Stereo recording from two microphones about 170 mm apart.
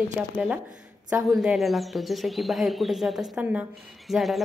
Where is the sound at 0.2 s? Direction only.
10° right (ahead or behind).